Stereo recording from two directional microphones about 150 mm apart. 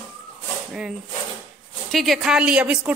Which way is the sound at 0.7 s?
5° right (ahead or behind).